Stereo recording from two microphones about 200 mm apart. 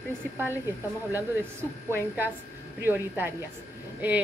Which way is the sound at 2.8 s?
10° right (ahead or behind).